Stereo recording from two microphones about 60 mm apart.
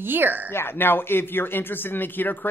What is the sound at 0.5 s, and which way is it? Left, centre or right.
Speech, left.